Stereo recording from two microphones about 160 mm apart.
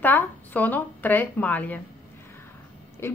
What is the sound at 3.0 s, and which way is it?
Speech, 15° left (ahead or behind).